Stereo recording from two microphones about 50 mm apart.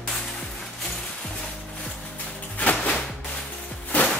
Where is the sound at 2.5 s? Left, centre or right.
Left.